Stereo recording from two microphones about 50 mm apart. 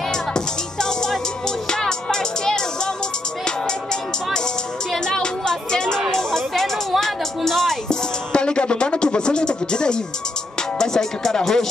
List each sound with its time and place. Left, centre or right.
0.1 s music: centre
8.3 s music: centre
10.8 s speech: centre